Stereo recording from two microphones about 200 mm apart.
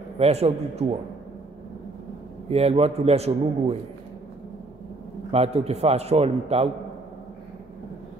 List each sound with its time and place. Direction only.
0.2 s a man's voice: 30° right (ahead or behind)
2.5 s a man's voice: 30° right (ahead or behind)
5.3 s a man's voice: 30° right (ahead or behind)